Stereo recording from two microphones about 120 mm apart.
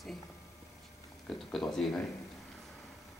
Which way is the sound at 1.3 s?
5° left (ahead or behind).